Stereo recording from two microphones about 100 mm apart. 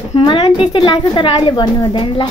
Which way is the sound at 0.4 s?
60° left (ahead or behind).